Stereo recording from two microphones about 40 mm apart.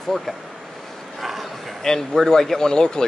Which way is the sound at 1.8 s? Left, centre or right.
Centre.